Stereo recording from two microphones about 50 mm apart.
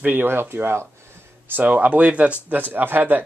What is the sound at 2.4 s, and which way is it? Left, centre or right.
Speech, right.